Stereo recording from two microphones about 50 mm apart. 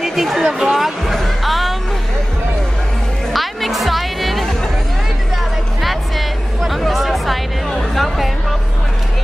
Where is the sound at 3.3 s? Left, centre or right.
Centre.